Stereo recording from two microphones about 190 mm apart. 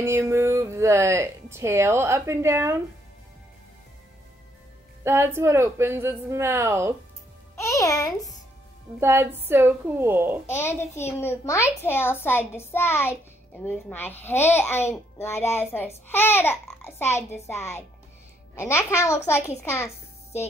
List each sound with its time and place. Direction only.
0.0 s speech: 15° right (ahead or behind)
5.0 s speech: 15° right (ahead or behind)
7.5 s a child's voice: 15° left (ahead or behind)
9.0 s speech: 10° right (ahead or behind)
10.4 s a child's voice: 15° left (ahead or behind)